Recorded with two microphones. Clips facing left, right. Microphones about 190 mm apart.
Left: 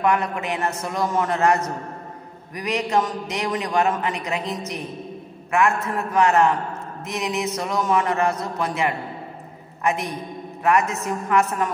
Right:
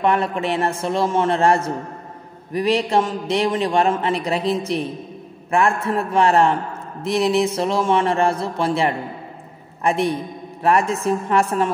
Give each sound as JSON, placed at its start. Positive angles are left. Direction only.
{"t": 0.0, "sound": "a man's voice", "side_deg": -30}